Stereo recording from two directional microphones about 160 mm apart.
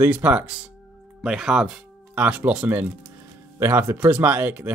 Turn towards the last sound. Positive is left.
turn(degrees=-10)  # may be behind; listen again after turning